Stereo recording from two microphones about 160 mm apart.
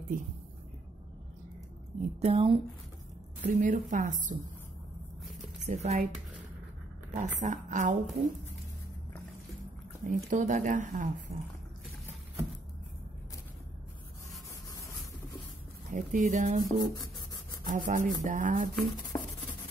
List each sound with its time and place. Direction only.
2.0 s a woman's voice: 40° right (ahead or behind)
3.4 s a woman's voice: 50° right (ahead or behind)
5.6 s a woman's voice: 45° right (ahead or behind)
10.0 s a woman's voice: 50° right (ahead or behind)
11.3 s a woman's voice: 40° right (ahead or behind)
15.9 s a woman's voice: 50° right (ahead or behind)
16.6 s a sound: 20° left (ahead or behind)
17.6 s a sound: 55° right (ahead or behind)